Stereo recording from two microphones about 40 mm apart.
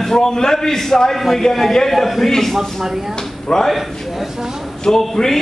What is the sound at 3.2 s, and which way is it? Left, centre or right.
Speech, centre.